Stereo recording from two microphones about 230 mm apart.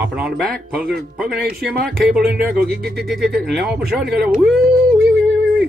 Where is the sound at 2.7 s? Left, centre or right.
Right.